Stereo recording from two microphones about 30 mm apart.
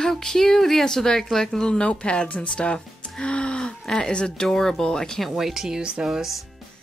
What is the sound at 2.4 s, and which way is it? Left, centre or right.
Music, left.